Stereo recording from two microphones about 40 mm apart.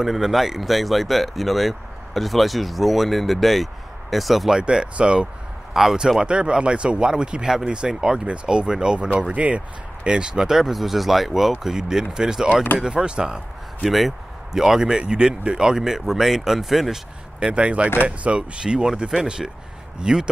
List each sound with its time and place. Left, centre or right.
0.0 s speech: centre
4.5 s speech: centre
9.3 s speech: right
10.0 s speech: right
10.5 s speech: centre
13.8 s speech: centre
17.5 s speech: right
18.6 s speech: centre